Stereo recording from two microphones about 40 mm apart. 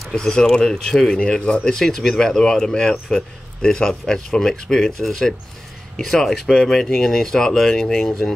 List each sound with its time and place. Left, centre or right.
0.1 s speech: centre
1.2 s speech: left